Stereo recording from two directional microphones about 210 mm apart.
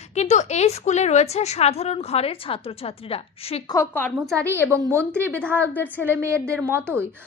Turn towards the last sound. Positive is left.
turn(degrees=-10)  # may be behind; listen again after turning